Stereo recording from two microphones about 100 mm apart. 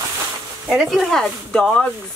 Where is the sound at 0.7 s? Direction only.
Centre (ahead or behind).